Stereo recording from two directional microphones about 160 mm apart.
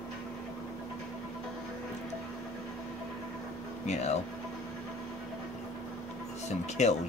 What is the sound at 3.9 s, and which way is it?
Speech, 45° left (ahead or behind).